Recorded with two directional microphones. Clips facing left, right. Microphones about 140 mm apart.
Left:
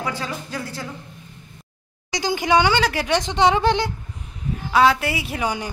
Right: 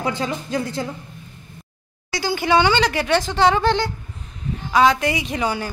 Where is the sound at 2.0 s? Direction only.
20° left (ahead or behind).